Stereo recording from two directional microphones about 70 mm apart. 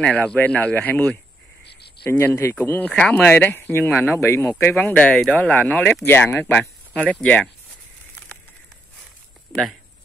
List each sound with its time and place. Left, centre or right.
0.0 s speech: centre
2.0 s speech: left
2.5 s speech: left
4.2 s speech: left
4.9 s speech: centre
6.0 s speech: left
6.9 s speech: centre